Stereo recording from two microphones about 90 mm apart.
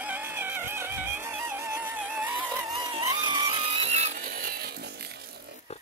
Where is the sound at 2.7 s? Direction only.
50° right (ahead or behind).